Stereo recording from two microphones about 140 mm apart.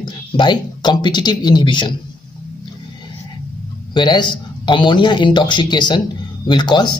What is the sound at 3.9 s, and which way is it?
Speech, 35° left (ahead or behind).